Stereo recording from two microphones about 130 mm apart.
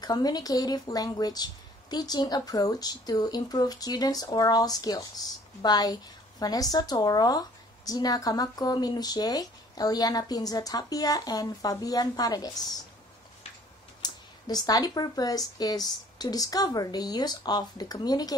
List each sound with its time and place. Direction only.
0.0 s a woman's voice: 30° left (ahead or behind)
14.0 s speech: 30° left (ahead or behind)